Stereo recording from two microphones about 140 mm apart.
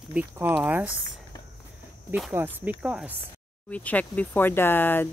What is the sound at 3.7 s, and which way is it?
Speech, 10° left (ahead or behind).